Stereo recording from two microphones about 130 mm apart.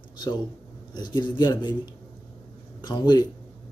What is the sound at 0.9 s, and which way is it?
Speech, 35° left (ahead or behind).